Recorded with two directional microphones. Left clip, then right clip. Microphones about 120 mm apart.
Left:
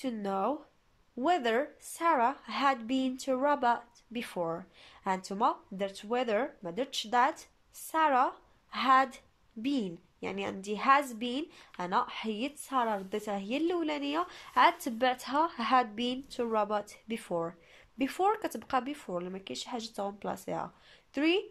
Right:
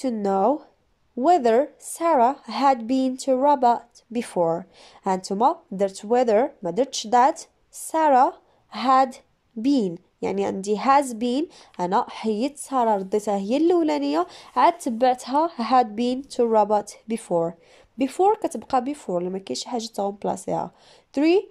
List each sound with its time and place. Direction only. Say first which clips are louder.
0.0 s speech: right 11 dB; 50° right (ahead or behind)